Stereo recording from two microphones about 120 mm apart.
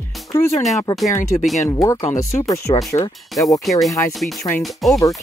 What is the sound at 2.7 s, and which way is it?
Speech, 45° left (ahead or behind).